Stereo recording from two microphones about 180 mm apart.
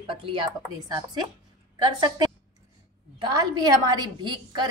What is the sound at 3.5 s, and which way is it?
A woman's voice, 20° right (ahead or behind).